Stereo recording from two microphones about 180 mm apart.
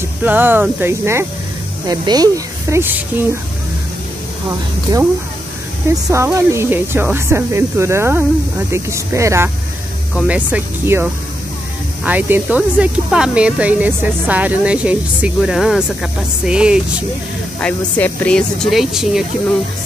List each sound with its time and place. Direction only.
0.2 s speech: 10° right (ahead or behind)
4.9 s speech: 20° right (ahead or behind)
17.6 s speech: 5° left (ahead or behind)